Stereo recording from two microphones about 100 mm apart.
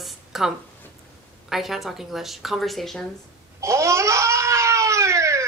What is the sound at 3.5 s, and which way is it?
Cat, 30° right (ahead or behind).